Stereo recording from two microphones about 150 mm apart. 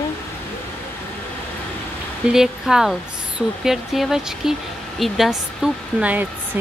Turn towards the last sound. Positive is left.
turn(degrees=-10)  # may be behind; listen again after turning